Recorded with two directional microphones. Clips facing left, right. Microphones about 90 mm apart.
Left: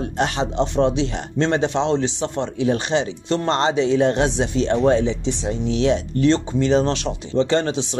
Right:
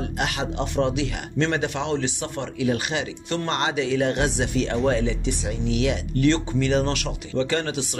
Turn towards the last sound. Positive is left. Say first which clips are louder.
# left 5 dB
turn(degrees=25)  # may be behind; listen again after turning